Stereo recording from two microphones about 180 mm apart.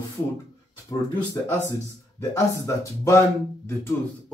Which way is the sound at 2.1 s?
15° left (ahead or behind).